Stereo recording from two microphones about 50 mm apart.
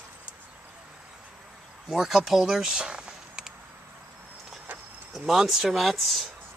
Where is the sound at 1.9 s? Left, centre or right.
Centre.